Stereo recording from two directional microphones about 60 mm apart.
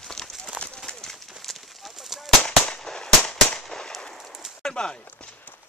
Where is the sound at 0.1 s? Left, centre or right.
Centre.